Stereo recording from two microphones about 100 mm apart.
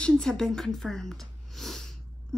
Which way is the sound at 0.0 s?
5° left (ahead or behind).